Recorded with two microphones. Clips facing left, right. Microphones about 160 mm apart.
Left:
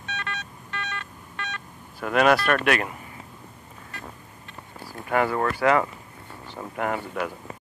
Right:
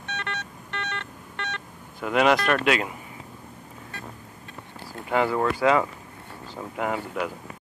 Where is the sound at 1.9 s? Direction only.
15° right (ahead or behind).